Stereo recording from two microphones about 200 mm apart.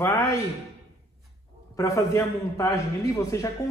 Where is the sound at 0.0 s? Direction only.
15° left (ahead or behind).